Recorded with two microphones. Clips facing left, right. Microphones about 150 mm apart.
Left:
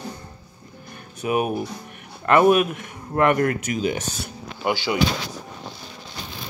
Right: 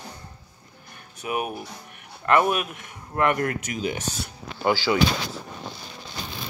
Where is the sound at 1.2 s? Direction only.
25° left (ahead or behind).